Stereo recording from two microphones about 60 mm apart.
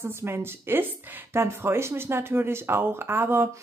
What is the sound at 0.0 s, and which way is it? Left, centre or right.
A woman's voice, right.